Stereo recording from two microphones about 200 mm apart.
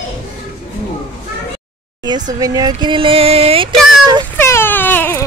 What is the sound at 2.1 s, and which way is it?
Speech, 20° right (ahead or behind).